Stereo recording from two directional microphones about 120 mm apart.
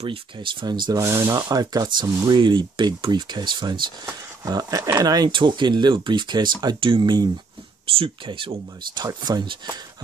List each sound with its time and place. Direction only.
0.0 s speech: 45° right (ahead or behind)
1.0 s speech: 25° right (ahead or behind)